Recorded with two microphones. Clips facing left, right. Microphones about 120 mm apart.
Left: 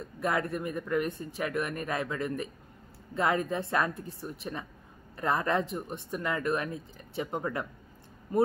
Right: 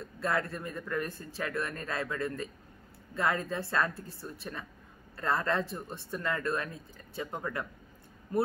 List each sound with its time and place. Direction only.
0.0 s a woman's voice: 15° left (ahead or behind)